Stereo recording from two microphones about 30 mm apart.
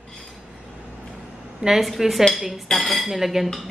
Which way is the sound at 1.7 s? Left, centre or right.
Centre.